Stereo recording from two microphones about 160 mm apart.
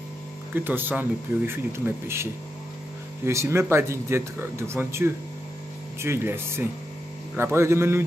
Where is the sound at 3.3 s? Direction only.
15° right (ahead or behind).